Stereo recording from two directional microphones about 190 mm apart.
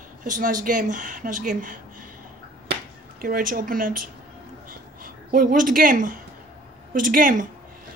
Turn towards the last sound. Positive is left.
turn(degrees=-45)  # may be behind; listen again after turning